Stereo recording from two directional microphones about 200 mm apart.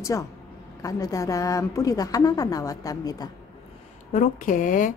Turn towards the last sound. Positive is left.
turn(degrees=40)  # may be behind; listen again after turning